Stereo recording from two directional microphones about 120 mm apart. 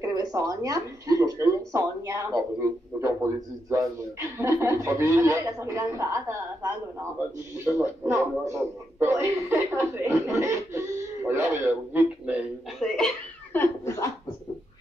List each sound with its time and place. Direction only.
0.0 s a man's voice: 30° right (ahead or behind); by 12.4 s 15° right (ahead or behind)
12.7 s speech: centre (ahead or behind)
13.5 s speech: 20° left (ahead or behind)